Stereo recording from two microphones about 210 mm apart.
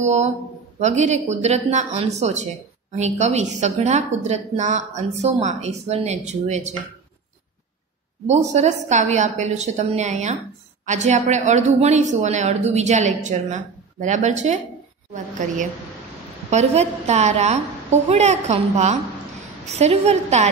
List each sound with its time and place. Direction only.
0.0 s a woman's voice: 35° right (ahead or behind)
8.3 s a woman's voice: 35° right (ahead or behind)
16.4 s a woman's voice: 30° right (ahead or behind)